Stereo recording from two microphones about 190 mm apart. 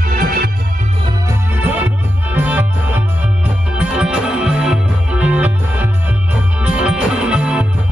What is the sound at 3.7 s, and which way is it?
Music, 5° right (ahead or behind).